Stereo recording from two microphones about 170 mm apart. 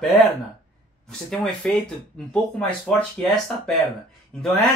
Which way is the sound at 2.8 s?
Centre (ahead or behind).